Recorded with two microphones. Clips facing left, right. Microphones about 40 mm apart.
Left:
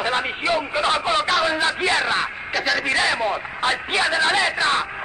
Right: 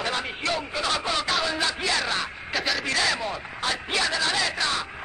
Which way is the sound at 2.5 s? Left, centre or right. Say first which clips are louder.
Left 4 dB; centre.